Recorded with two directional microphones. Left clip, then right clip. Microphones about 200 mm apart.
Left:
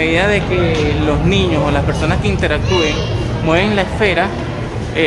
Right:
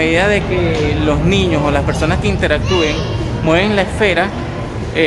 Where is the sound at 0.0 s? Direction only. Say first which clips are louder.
Right 1 dB; 15° right (ahead or behind).